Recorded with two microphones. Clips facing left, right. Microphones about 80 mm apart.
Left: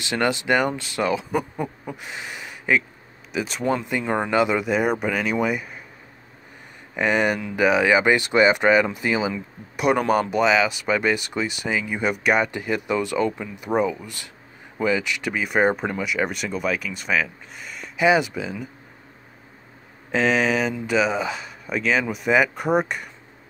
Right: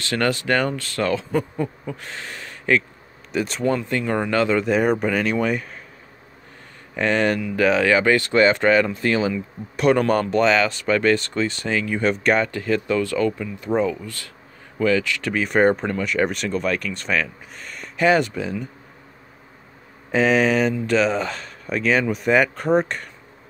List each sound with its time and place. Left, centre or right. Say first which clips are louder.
0.0 s speech: right 1 dB; centre
3.6 s speech: right 1 dB; centre
4.6 s speech: right 3 dB; centre
7.0 s speech: right 1 dB; centre
15.3 s speech: right 3 dB; centre
20.1 s speech: right 3 dB; centre